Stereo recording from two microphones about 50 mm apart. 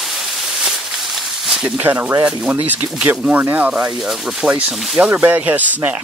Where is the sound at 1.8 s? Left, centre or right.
Right.